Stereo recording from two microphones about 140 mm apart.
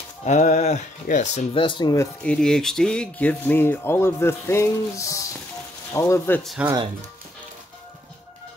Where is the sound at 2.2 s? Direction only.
5° left (ahead or behind).